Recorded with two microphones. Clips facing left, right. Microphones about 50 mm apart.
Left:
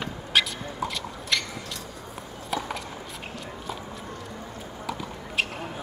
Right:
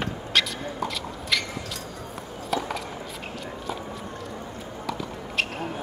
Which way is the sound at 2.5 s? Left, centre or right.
Centre.